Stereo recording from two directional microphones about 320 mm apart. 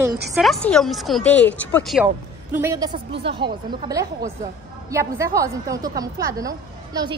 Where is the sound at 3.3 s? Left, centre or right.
Right.